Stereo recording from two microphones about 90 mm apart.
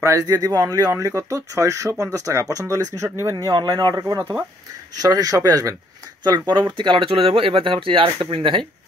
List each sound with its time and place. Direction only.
0.0 s speech: 35° right (ahead or behind)
3.5 s speech: 50° right (ahead or behind)
4.0 s speech: 35° right (ahead or behind)
4.9 s speech: 45° right (ahead or behind)
6.2 s speech: 55° right (ahead or behind); by 8.6 s 75° right (ahead or behind)